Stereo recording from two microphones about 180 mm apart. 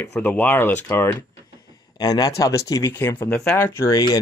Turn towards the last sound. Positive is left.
turn(degrees=20)  # may be behind; listen again after turning